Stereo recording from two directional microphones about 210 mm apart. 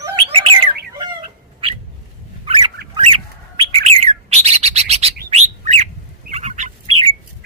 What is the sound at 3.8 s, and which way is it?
Bird, 30° right (ahead or behind).